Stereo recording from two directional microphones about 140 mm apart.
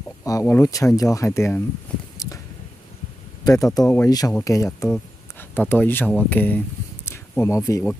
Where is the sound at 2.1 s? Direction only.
25° left (ahead or behind).